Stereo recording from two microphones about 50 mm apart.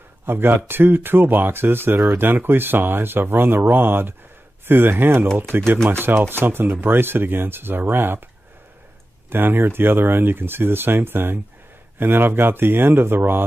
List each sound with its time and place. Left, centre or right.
0.2 s speech: right
9.3 s speech: right